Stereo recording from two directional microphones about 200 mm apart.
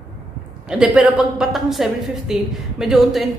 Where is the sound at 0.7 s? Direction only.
Centre (ahead or behind).